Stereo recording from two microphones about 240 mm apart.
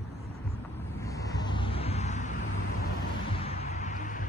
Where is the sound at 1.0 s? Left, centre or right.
Centre; by 2.4 s left.